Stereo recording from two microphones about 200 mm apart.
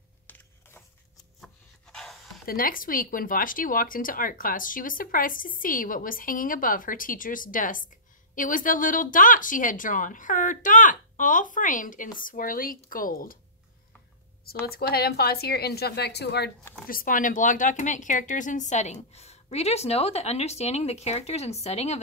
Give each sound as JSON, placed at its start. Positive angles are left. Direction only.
{"t": 0.3, "sound": "a sound", "side_deg": 10}
{"t": 2.4, "sound": "speech", "side_deg": 45}
{"t": 14.4, "sound": "speech", "side_deg": 50}
{"t": 16.8, "sound": "speech", "side_deg": 45}